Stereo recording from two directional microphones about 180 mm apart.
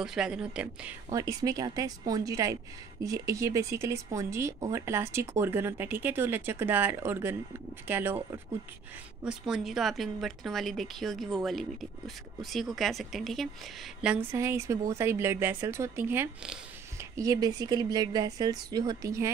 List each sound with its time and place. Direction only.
0.0 s speech: 5° right (ahead or behind)
1.1 s a woman's voice: 20° right (ahead or behind); by 13.5 s centre (ahead or behind)
14.0 s a woman's voice: 10° right (ahead or behind)